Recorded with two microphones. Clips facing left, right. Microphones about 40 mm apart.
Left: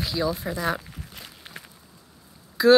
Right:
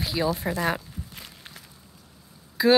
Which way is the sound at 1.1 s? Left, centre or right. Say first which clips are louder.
Left 1 dB; centre.